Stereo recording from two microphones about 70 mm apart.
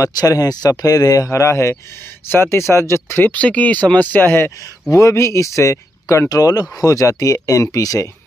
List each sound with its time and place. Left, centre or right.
0.0 s speech: left
1.3 s speech: left
3.3 s speech: left
4.9 s speech: left